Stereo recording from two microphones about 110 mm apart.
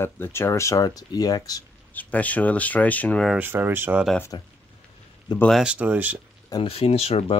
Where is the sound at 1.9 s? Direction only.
15° left (ahead or behind).